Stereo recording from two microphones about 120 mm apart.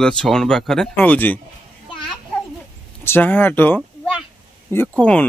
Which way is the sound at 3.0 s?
15° left (ahead or behind).